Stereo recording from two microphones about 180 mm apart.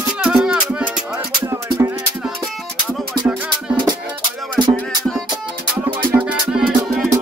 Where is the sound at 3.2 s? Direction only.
10° right (ahead or behind).